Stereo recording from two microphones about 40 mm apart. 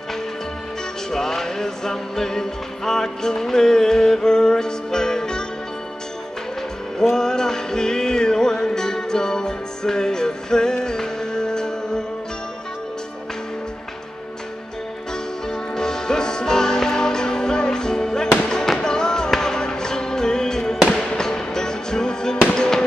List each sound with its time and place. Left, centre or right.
1.1 s music: centre
7.0 s music: centre
15.4 s music: centre
20.9 s fireworks: centre